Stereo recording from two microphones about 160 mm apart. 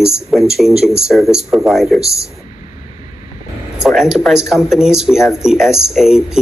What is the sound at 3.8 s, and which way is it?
Speech, centre (ahead or behind).